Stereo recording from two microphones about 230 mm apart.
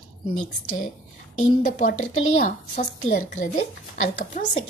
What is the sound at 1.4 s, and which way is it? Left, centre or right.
Speech, left.